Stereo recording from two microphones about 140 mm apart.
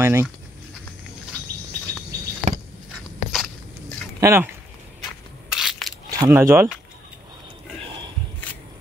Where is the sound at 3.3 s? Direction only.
Centre (ahead or behind).